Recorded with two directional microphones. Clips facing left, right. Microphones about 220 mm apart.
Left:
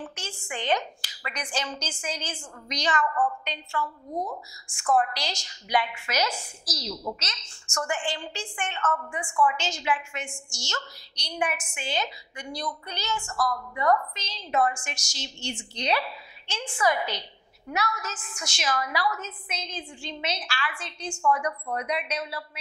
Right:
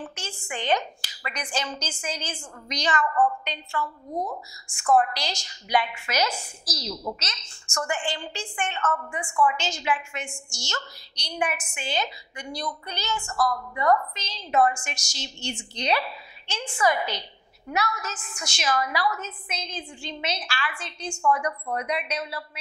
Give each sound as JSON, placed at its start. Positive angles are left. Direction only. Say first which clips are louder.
{"t": 0.0, "sound": "a woman's voice", "louder": "right 1 dB", "side_deg": -10}
{"t": 3.1, "sound": "a woman's voice", "louder": "right 4 dB", "side_deg": -20}
{"t": 3.8, "sound": "a woman's voice", "louder": "right 2 dB", "side_deg": -35}
{"t": 4.8, "sound": "a woman's voice", "louder": "right 3 dB", "side_deg": -20}
{"t": 8.8, "sound": "a woman's voice", "louder": "left 2 dB", "side_deg": -25}
{"t": 9.6, "sound": "a woman's voice", "louder": "right 1 dB", "side_deg": -10}
{"t": 13.2, "sound": "a woman's voice", "louder": "right 4 dB", "side_deg": -30}
{"t": 14.1, "sound": "a woman's voice", "louder": "right 3 dB", "side_deg": -10}
{"t": 21.2, "sound": "a woman's voice", "louder": "right 1 dB", "side_deg": -25}
{"t": 21.8, "sound": "a woman's voice", "louder": "right 1 dB", "side_deg": -10}